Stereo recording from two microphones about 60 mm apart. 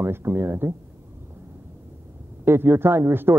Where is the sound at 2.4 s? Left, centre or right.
Right.